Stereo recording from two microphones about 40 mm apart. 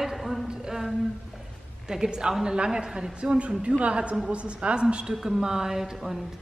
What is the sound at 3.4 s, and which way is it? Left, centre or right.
A woman's voice, right.